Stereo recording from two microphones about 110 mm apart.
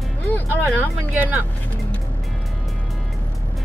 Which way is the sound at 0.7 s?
15° right (ahead or behind).